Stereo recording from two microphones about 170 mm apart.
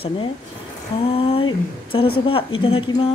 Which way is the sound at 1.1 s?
35° left (ahead or behind).